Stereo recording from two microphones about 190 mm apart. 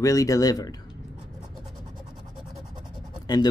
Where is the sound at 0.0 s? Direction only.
15° left (ahead or behind).